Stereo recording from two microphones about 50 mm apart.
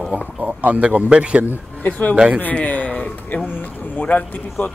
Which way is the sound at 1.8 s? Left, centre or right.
Left.